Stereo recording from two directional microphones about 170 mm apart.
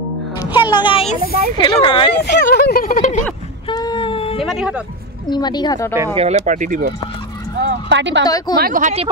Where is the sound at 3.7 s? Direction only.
25° left (ahead or behind).